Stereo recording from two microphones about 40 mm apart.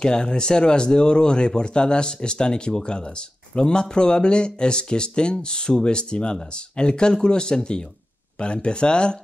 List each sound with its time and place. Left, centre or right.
0.0 s speech: left